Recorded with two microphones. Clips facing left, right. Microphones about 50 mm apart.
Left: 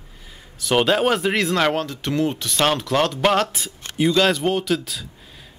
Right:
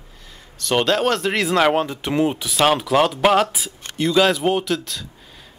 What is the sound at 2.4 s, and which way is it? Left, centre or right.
Speech, centre.